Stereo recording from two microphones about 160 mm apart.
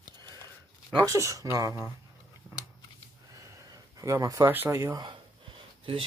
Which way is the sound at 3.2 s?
20° right (ahead or behind).